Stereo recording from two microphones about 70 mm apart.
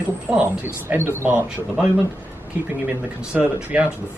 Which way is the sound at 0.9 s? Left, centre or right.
Right.